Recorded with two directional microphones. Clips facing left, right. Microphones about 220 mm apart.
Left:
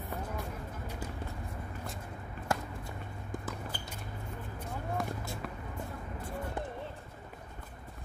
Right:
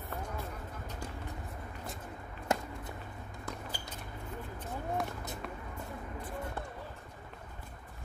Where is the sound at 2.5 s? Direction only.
20° right (ahead or behind).